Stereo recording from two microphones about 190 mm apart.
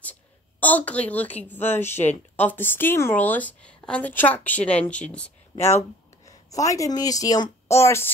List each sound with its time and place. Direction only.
0.0 s a woman's voice: 10° left (ahead or behind)